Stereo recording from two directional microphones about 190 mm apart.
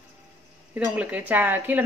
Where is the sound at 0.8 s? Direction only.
10° right (ahead or behind).